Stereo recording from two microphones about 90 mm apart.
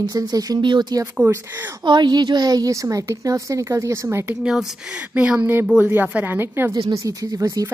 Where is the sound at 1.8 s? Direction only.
60° right (ahead or behind); by 4.3 s 30° right (ahead or behind).